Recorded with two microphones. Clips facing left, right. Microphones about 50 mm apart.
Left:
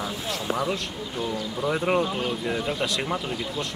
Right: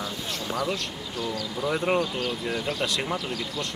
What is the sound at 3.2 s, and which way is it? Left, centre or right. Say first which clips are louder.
Speech: left 1 dB; centre.